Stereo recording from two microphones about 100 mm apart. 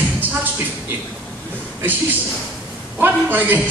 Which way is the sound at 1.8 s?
20° right (ahead or behind).